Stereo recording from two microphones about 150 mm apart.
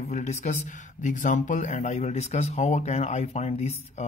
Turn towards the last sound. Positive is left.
turn(degrees=45)  # may be behind; listen again after turning